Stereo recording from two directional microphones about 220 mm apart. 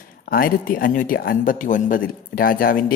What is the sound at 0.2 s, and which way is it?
A man's voice, 45° left (ahead or behind).